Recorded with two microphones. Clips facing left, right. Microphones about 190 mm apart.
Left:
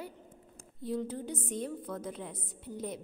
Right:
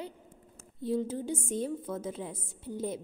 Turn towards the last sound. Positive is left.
turn(degrees=-30)  # may be behind; listen again after turning